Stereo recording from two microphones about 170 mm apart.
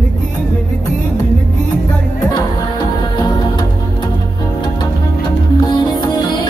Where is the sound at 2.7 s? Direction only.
25° left (ahead or behind).